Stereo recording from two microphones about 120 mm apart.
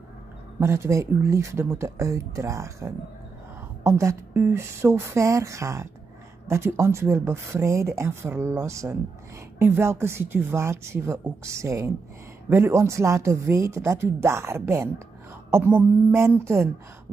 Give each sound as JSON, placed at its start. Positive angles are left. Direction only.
{"t": 0.6, "sound": "speech", "side_deg": -25}